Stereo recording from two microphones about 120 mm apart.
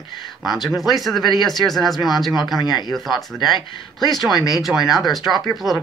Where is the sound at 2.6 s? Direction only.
35° left (ahead or behind).